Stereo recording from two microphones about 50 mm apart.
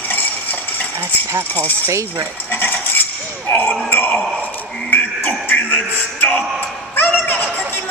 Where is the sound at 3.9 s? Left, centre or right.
Left.